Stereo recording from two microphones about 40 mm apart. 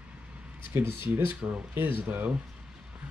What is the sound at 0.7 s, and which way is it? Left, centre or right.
Speech, right.